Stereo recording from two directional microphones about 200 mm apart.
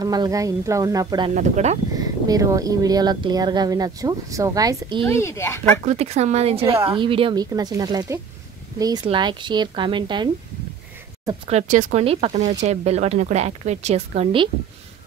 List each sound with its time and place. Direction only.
0.0 s speech: 20° right (ahead or behind)
1.3 s a woman's voice: 35° right (ahead or behind)
2.0 s speech: 20° right (ahead or behind)
5.0 s speech: 15° left (ahead or behind)
5.9 s a woman's voice: 35° right (ahead or behind)
11.4 s a woman's voice: 35° right (ahead or behind)